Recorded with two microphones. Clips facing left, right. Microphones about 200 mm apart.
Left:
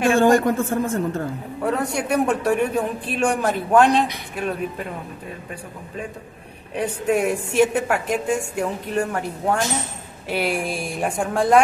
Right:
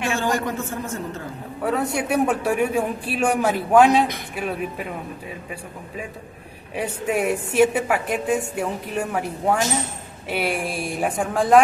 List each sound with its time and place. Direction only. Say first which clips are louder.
0.0 s a woman's voice: left 8 dB; 50° left (ahead or behind)
1.6 s a man's voice: even; 5° right (ahead or behind)
6.7 s a woman's voice: left 3 dB; 5° right (ahead or behind)